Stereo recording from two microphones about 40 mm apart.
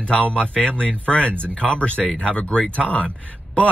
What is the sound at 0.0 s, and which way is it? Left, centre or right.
Speech, left.